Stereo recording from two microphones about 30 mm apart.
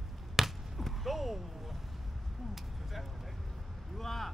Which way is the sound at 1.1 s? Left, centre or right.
Centre.